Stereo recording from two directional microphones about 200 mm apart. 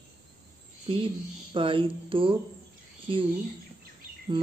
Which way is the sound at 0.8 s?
25° right (ahead or behind).